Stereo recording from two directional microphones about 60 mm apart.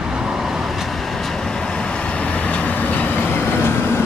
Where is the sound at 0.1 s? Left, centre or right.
Centre.